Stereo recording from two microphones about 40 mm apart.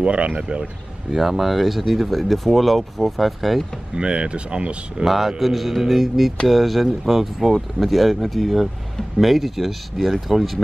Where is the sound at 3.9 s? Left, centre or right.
Right.